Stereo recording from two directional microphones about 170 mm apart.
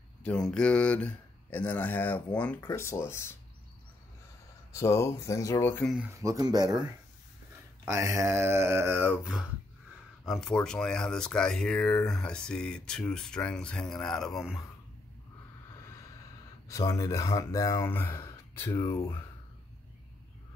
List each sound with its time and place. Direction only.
0.5 s speech: 5° left (ahead or behind)
4.7 s speech: 15° left (ahead or behind)
6.1 s speech: 20° right (ahead or behind)
7.9 s speech: 15° right (ahead or behind); by 14.6 s centre (ahead or behind)
16.6 s speech: 20° left (ahead or behind)